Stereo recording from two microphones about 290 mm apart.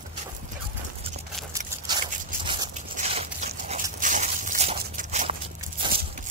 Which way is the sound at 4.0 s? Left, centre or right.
Right.